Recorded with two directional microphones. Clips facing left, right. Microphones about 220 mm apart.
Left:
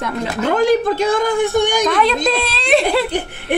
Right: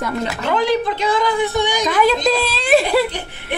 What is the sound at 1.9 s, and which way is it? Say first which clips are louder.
A woman's voice: even; 5° right (ahead or behind).